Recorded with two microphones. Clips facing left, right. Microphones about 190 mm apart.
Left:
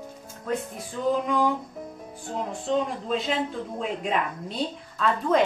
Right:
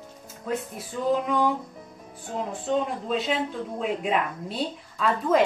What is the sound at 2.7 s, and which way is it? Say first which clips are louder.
A woman's voice: even; centre (ahead or behind).